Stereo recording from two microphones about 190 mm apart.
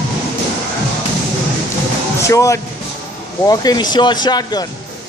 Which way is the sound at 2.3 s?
15° left (ahead or behind).